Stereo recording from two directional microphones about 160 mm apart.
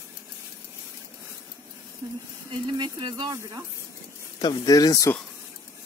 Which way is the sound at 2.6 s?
30° right (ahead or behind).